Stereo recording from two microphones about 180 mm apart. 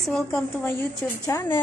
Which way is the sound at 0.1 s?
5° left (ahead or behind).